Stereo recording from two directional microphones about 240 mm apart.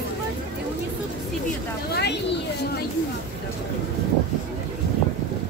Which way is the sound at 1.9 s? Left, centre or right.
Left.